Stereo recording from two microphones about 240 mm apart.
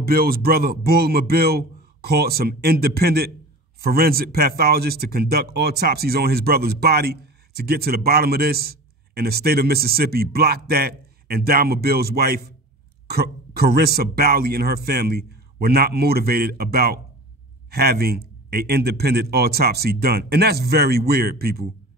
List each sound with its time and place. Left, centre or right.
0.0 s speech: right